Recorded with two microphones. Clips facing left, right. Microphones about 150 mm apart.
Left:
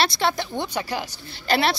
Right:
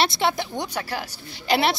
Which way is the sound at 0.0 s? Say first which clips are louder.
Even; 15° right (ahead or behind).